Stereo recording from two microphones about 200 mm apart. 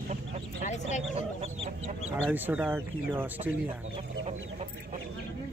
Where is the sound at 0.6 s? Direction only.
35° left (ahead or behind).